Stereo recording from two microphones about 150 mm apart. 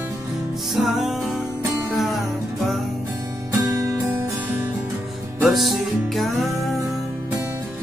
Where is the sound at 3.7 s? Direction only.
20° right (ahead or behind).